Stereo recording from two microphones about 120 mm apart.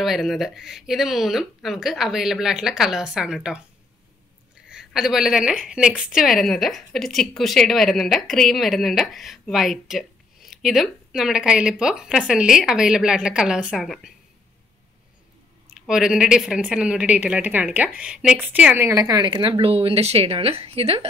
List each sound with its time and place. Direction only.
0.0 s a woman's voice: centre (ahead or behind)
4.6 s a woman's voice: 5° right (ahead or behind)
15.7 s a woman's voice: 5° right (ahead or behind)
18.8 s a woman's voice: 25° right (ahead or behind); by 21.1 s 55° right (ahead or behind)